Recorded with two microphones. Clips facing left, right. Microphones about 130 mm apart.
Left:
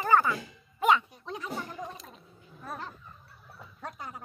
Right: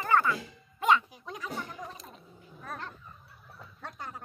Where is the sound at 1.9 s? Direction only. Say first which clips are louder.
Even; centre (ahead or behind).